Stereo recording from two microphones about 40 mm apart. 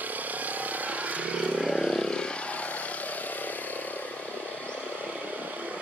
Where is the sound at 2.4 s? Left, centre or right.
Left.